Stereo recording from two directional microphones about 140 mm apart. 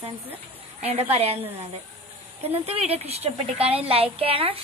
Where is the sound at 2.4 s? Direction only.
45° right (ahead or behind).